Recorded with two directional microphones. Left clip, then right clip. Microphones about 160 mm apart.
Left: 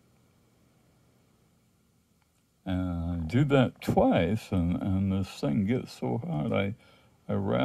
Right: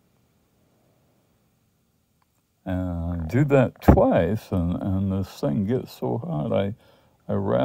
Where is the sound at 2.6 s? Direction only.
30° right (ahead or behind).